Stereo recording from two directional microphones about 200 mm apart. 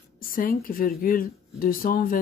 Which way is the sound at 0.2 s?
45° left (ahead or behind).